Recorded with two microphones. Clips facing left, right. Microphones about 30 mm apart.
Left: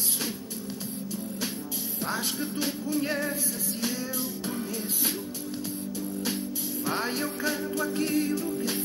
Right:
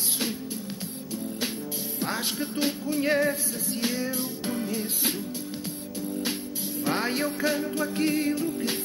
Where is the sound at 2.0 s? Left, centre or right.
Right.